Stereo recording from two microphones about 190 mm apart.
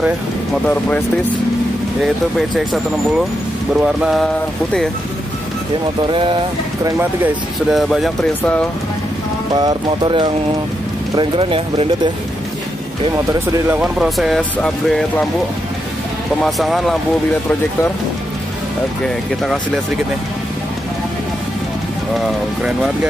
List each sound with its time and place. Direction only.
0.7 s speech: 10° left (ahead or behind)
2.3 s speech: centre (ahead or behind)
6.0 s speech: 25° right (ahead or behind)
7.7 s speech: centre (ahead or behind)
9.5 s speech: 20° right (ahead or behind)
13.7 s speech: 5° right (ahead or behind)
16.4 s speech: centre (ahead or behind)
19.0 s speech: centre (ahead or behind)